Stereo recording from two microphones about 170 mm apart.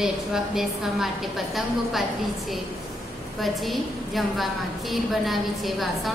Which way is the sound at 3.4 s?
Centre (ahead or behind).